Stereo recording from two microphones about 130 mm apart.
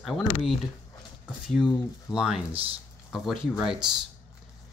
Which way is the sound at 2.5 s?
45° right (ahead or behind).